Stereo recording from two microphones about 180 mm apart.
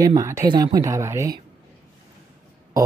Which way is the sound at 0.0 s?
20° right (ahead or behind).